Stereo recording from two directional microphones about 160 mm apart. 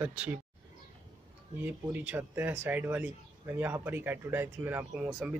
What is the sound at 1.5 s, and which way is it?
Speech, 10° right (ahead or behind).